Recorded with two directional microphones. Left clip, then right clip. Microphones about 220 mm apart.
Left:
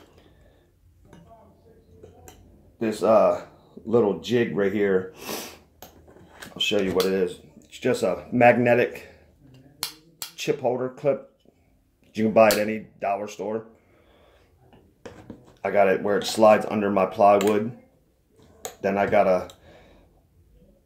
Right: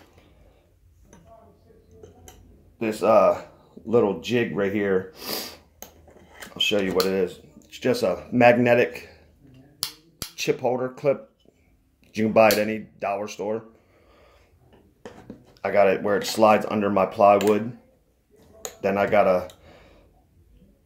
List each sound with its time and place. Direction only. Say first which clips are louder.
2.8 s speech: right 1 dB; 10° right (ahead or behind)
6.5 s speech: right 1 dB; 15° right (ahead or behind)
8.9 s a sound: right 1 dB; 20° right (ahead or behind)
10.3 s speech: right 1 dB; 20° right (ahead or behind)
12.2 s speech: even; 20° right (ahead or behind)
15.5 s speech: right 1 dB; 15° right (ahead or behind)
18.8 s speech: right 1 dB; 15° right (ahead or behind)